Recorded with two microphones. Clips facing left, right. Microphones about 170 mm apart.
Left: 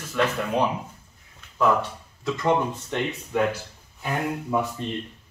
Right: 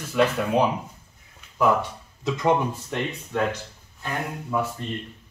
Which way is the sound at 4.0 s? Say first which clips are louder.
Left 3 dB; 15° left (ahead or behind).